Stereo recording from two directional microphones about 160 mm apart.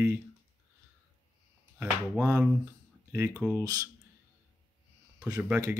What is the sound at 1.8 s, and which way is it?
Speech, 15° right (ahead or behind).